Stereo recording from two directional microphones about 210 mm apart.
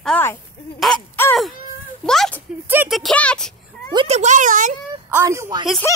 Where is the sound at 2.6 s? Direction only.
10° right (ahead or behind).